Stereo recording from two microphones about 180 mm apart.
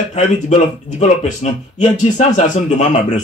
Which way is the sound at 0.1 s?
40° left (ahead or behind).